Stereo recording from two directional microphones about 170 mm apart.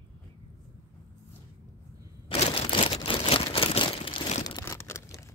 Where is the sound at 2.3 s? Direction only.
35° left (ahead or behind).